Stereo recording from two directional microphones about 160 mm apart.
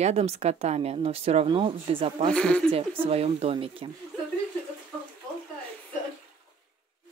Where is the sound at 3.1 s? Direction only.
40° right (ahead or behind).